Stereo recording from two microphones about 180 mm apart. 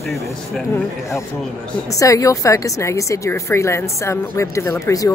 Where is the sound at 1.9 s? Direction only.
20° left (ahead or behind).